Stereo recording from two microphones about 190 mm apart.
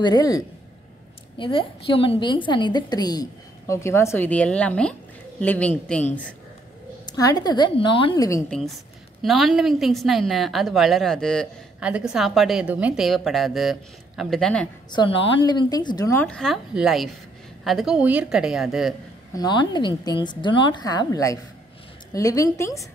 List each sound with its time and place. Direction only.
0.0 s a woman's voice: 20° left (ahead or behind)
1.4 s a woman's voice: 25° left (ahead or behind); by 6.0 s 5° left (ahead or behind)
7.1 s a woman's voice: 20° left (ahead or behind)
9.2 s a woman's voice: centre (ahead or behind)
14.9 s a woman's voice: 25° left (ahead or behind); by 18.9 s centre (ahead or behind)
19.3 s a woman's voice: 20° left (ahead or behind)